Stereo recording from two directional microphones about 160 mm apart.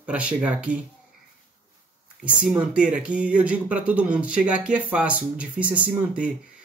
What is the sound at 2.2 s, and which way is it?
Speech, 5° right (ahead or behind).